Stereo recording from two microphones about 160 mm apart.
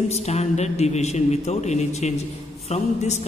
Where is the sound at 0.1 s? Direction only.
45° left (ahead or behind).